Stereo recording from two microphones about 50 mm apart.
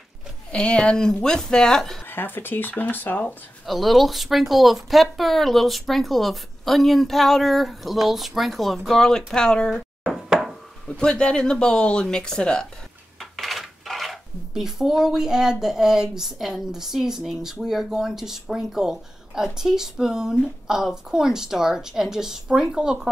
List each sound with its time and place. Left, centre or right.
0.5 s speech: centre
2.0 s speech: left
3.6 s speech: centre
10.9 s speech: centre
13.2 s a sound: centre
14.5 s speech: centre